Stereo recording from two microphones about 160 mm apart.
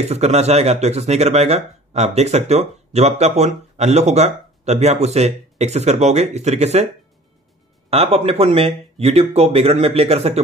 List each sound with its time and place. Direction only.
0.1 s speech: 40° right (ahead or behind)
7.9 s speech: 40° right (ahead or behind)